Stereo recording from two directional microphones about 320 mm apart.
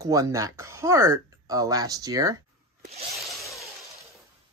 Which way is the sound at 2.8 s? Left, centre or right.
Centre.